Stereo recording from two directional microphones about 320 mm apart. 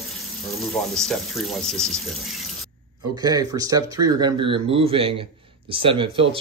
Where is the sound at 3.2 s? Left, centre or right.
Centre.